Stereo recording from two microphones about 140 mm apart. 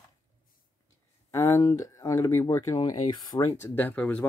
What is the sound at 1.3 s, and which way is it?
Speech, 20° left (ahead or behind).